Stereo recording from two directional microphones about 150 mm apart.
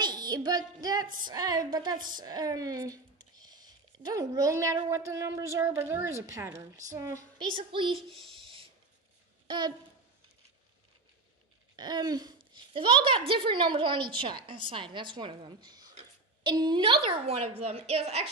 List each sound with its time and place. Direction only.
0.0 s a woman's voice: 25° right (ahead or behind)
7.4 s a woman's voice: 35° right (ahead or behind)
7.9 s a child's voice: centre (ahead or behind)
9.5 s a woman's voice: 30° right (ahead or behind)
11.7 s a sound: 30° right (ahead or behind)
12.7 s a woman's voice: 35° right (ahead or behind)